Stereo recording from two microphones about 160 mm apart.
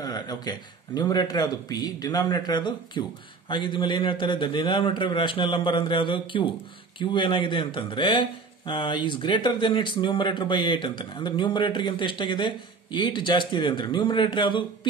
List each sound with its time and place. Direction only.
0.0 s speech: 25° left (ahead or behind)